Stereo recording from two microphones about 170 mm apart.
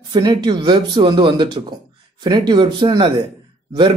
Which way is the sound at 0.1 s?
25° right (ahead or behind).